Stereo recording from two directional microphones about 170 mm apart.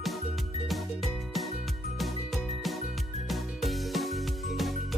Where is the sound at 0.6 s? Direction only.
Centre (ahead or behind).